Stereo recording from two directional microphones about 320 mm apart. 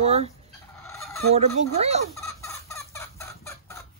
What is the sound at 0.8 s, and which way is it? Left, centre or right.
Fowl, centre.